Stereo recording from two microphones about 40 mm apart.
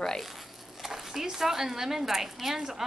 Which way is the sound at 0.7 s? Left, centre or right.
Centre.